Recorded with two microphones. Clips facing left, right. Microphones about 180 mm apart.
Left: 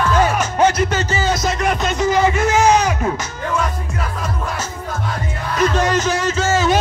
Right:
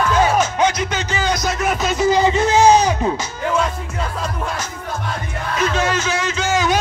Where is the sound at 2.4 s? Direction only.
35° right (ahead or behind).